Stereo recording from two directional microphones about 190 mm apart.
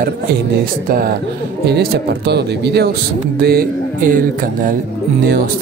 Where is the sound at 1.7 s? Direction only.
60° right (ahead or behind).